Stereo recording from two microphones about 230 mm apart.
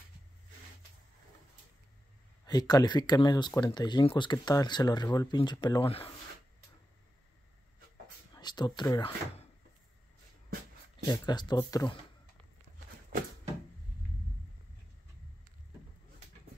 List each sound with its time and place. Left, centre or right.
2.4 s speech: centre
8.4 s speech: centre
11.1 s speech: centre